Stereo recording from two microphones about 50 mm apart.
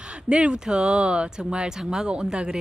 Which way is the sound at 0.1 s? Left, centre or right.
Right.